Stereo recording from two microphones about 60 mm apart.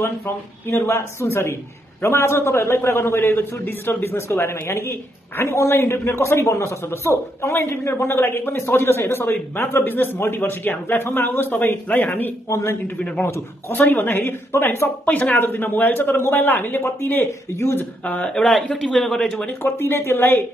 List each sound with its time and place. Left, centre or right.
0.8 s a man's voice: left
12.4 s a man's voice: left
15.0 s a man's voice: left
18.0 s speech: centre
19.6 s a man's voice: left